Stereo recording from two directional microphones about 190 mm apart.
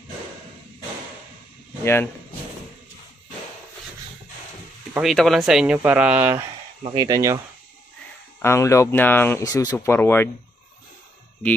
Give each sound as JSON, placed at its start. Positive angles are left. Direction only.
{"t": 4.9, "sound": "speech", "side_deg": 0}
{"t": 6.8, "sound": "speech", "side_deg": -20}
{"t": 8.4, "sound": "speech", "side_deg": 15}